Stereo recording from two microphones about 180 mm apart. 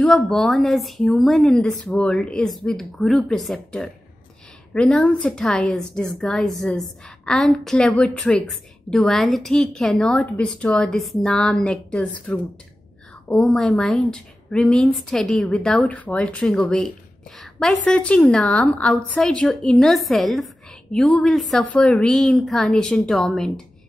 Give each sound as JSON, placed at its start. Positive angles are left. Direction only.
{"t": 0.0, "sound": "a woman's voice", "side_deg": 0}